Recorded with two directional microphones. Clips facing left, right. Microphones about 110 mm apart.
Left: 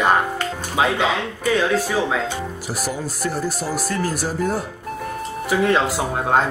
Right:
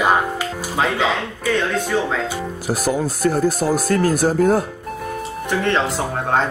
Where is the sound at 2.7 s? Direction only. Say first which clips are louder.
Right 9 dB; 50° right (ahead or behind).